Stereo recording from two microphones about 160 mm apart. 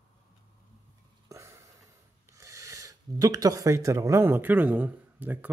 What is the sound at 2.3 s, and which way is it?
Speech, 20° right (ahead or behind).